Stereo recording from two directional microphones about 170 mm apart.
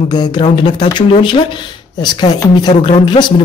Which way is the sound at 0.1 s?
25° left (ahead or behind).